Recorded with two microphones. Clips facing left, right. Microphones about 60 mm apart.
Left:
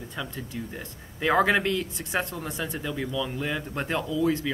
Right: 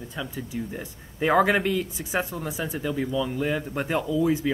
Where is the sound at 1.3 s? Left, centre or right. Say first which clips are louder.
Right 1 dB; centre.